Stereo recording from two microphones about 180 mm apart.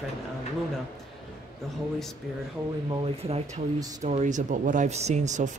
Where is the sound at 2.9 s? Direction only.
30° right (ahead or behind).